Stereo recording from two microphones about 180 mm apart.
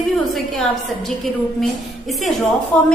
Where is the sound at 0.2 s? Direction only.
Centre (ahead or behind).